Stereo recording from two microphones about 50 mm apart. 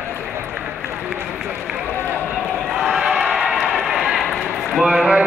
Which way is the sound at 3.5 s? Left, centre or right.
Centre.